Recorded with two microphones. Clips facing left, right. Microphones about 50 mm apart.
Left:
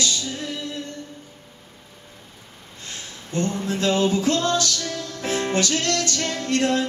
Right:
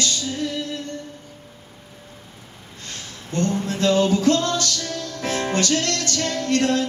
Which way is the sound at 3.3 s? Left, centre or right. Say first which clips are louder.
Right 2 dB; centre.